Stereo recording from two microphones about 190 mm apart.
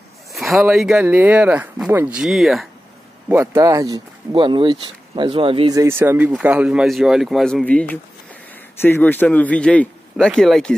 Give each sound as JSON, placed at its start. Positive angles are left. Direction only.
{"t": 0.3, "sound": "speech", "side_deg": 0}
{"t": 3.3, "sound": "speech", "side_deg": -15}
{"t": 5.8, "sound": "a man's voice", "side_deg": -15}